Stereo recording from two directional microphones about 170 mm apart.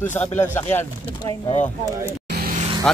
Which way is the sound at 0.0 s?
10° left (ahead or behind).